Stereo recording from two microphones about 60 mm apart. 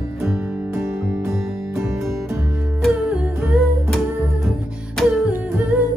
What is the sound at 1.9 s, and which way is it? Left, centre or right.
Music, right.